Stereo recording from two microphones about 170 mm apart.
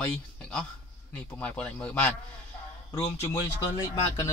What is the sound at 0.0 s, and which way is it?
A man's voice, 5° left (ahead or behind).